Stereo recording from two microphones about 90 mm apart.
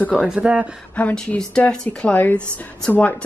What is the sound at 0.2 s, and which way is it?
Speech, 10° right (ahead or behind).